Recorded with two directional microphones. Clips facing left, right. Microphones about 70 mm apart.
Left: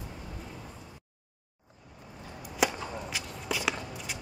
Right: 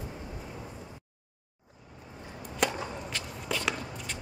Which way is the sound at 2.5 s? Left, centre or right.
Centre.